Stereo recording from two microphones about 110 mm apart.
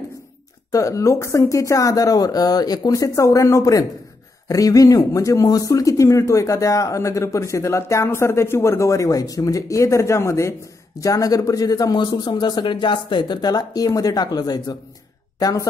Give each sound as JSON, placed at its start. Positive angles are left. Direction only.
{"t": 0.7, "sound": "a woman's voice", "side_deg": 30}